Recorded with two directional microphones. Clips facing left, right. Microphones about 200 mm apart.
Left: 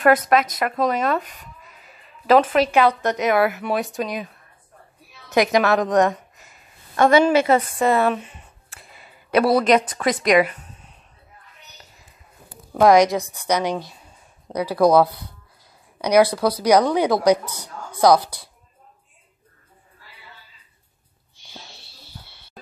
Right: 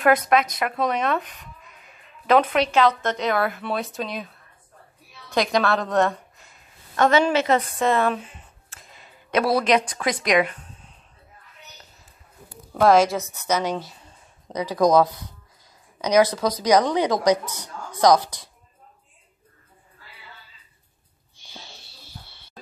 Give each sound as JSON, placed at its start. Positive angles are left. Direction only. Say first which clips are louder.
{"t": 0.0, "sound": "speech", "louder": "left 2 dB", "side_deg": 0}
{"t": 2.7, "sound": "speech", "louder": "left 2 dB", "side_deg": 10}
{"t": 5.3, "sound": "a woman's voice", "louder": "left 4 dB", "side_deg": 20}
{"t": 8.7, "sound": "a sound", "louder": "left 1 dB", "side_deg": 5}
{"t": 12.7, "sound": "a woman's voice", "louder": "left 3 dB", "side_deg": 15}